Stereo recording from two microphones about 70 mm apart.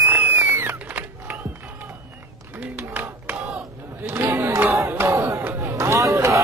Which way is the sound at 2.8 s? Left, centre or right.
Right.